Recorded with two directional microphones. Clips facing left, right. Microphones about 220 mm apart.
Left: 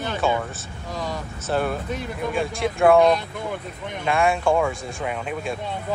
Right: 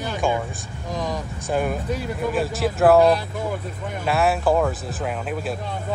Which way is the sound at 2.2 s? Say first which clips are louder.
Right 1 dB; 5° right (ahead or behind).